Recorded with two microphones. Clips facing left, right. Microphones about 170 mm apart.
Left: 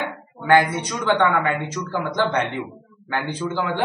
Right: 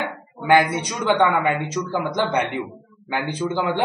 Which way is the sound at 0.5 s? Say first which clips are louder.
Even; 15° right (ahead or behind).